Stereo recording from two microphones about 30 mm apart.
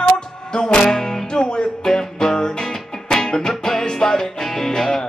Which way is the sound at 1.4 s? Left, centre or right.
Left.